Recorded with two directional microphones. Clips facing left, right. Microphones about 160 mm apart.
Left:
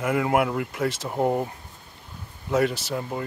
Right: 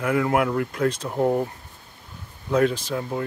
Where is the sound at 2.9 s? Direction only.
5° left (ahead or behind).